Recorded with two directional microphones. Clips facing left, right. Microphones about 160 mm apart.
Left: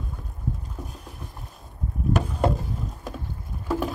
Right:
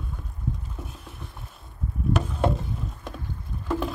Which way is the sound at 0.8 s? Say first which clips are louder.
Left 1 dB; centre (ahead or behind).